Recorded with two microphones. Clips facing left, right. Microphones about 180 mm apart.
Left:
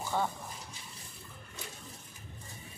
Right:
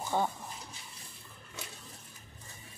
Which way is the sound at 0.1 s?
15° right (ahead or behind).